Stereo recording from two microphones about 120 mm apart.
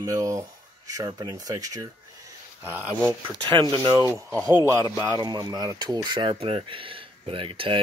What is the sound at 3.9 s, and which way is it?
Speech, 25° right (ahead or behind).